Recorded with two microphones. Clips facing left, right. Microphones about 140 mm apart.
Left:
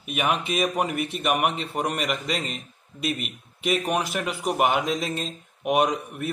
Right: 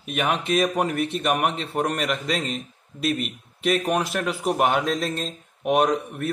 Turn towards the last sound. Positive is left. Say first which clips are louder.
# right 2 dB
turn(degrees=5)  # may be behind; listen again after turning